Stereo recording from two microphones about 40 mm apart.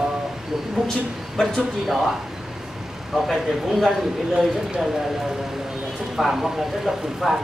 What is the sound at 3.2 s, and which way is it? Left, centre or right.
Speech, centre.